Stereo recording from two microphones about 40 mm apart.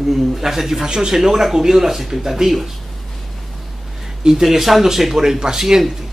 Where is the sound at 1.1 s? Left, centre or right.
Centre.